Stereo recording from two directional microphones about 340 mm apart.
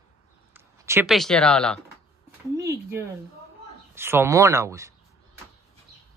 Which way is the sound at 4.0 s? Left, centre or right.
Centre.